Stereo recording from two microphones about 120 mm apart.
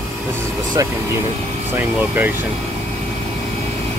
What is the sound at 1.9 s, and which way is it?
Speech, 15° right (ahead or behind).